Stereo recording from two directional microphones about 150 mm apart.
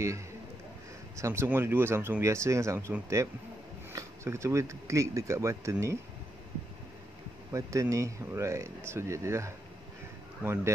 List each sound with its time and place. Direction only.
1.1 s speech: 20° right (ahead or behind)
7.5 s speech: 20° right (ahead or behind)